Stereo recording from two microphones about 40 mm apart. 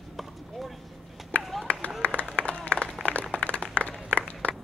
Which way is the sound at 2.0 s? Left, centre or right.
Left.